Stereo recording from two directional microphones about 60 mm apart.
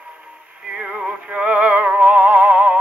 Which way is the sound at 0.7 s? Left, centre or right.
Centre.